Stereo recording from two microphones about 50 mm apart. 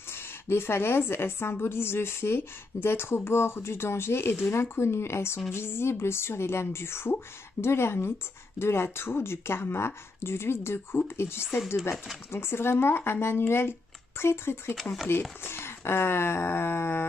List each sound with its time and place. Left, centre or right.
0.1 s a woman's voice: left